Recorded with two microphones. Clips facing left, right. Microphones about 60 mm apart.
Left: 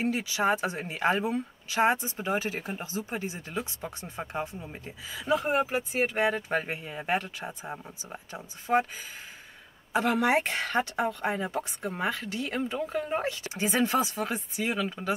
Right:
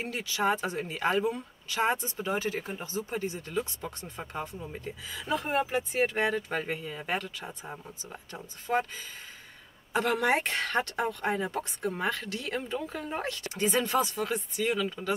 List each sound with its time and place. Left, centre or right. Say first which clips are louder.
0.0 s speech: left 3 dB; centre
6.3 s speech: left 1 dB; left
10.2 s speech: left 1 dB; centre; by 15.1 s left